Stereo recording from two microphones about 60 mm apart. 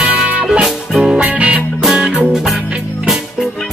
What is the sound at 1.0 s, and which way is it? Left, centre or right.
Music, centre.